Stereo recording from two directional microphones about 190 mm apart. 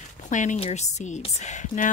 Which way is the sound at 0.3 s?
40° left (ahead or behind).